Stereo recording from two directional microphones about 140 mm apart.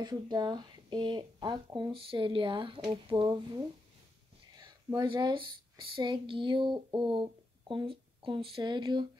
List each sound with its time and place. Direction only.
0.0 s speech: 30° right (ahead or behind)